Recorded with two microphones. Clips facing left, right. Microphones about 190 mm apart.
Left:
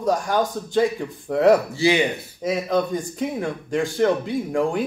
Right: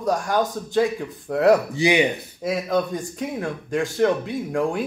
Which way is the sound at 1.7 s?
15° right (ahead or behind).